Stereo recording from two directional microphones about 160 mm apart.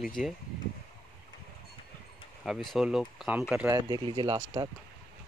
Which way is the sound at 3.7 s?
25° right (ahead or behind).